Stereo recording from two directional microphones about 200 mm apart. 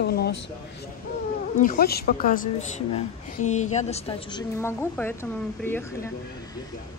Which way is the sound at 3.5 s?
35° left (ahead or behind).